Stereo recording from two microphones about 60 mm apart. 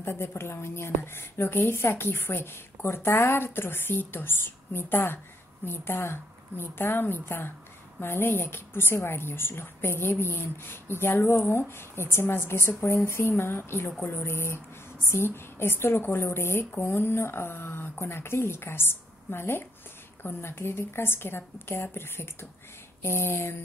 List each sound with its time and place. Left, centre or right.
0.0 s a woman's voice: left